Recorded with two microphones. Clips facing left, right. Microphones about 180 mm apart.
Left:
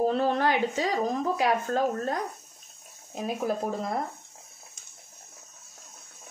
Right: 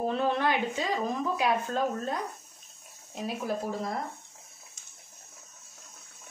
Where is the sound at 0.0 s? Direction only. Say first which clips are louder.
Left 3 dB; 40° left (ahead or behind).